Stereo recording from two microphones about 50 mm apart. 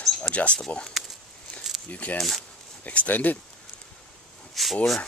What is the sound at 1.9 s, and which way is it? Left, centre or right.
Speech, left.